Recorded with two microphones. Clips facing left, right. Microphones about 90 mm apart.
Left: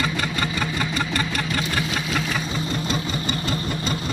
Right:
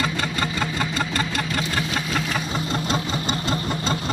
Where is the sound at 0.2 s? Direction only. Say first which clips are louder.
Even; 30° right (ahead or behind).